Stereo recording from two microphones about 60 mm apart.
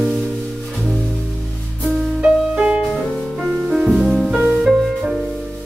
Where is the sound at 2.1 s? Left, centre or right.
Centre.